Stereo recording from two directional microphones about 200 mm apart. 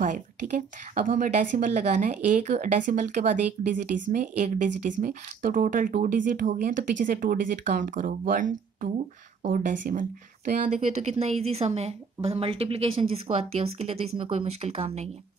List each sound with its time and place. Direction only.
0.0 s a woman's voice: 40° right (ahead or behind)